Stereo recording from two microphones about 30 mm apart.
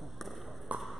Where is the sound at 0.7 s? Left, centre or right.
Right.